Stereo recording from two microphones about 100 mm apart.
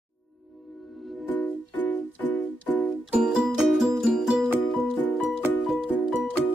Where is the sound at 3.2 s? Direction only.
10° right (ahead or behind).